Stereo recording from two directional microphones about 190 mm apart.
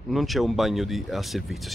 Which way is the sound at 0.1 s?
Centre (ahead or behind).